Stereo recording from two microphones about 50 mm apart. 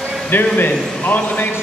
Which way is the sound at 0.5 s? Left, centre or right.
Left.